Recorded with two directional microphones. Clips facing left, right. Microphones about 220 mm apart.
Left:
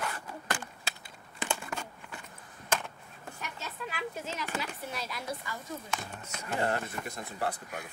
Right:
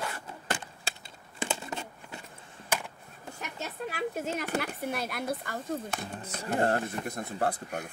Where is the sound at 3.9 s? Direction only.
55° right (ahead or behind).